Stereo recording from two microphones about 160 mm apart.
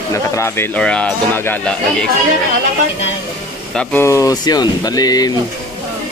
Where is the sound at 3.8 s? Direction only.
15° left (ahead or behind).